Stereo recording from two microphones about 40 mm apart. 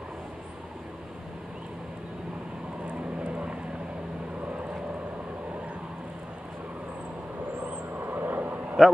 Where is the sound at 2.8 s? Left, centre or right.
Right.